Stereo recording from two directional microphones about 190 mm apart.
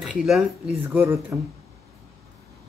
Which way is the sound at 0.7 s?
10° right (ahead or behind).